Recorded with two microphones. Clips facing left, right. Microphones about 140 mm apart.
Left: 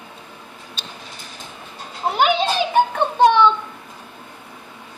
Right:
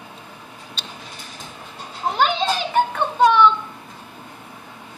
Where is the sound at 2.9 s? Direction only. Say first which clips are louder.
Left 1 dB; 30° left (ahead or behind).